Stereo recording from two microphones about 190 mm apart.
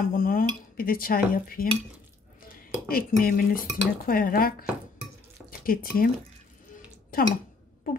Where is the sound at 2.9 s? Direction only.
50° left (ahead or behind).